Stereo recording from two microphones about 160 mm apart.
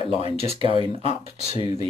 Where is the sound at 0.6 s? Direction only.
35° left (ahead or behind).